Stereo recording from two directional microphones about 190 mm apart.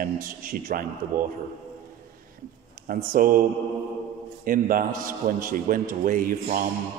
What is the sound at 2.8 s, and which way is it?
Speech, 45° right (ahead or behind).